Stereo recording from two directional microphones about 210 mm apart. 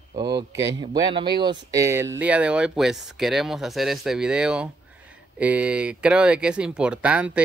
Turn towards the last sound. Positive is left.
turn(degrees=-5)  # may be behind; listen again after turning